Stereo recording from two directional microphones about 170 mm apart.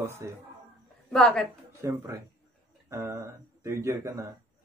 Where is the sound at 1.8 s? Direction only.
15° right (ahead or behind).